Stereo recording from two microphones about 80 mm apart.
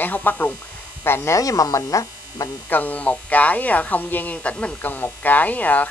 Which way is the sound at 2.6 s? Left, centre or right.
Left.